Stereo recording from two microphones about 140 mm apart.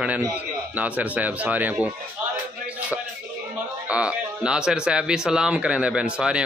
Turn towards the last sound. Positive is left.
turn(degrees=-5)  # may be behind; listen again after turning